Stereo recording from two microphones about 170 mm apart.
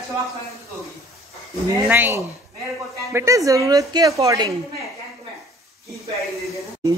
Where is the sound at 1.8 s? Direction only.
10° right (ahead or behind).